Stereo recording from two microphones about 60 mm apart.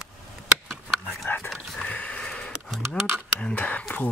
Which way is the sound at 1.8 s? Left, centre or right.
Left.